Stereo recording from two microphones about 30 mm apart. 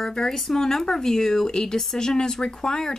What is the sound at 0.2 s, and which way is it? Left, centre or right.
Speech, centre.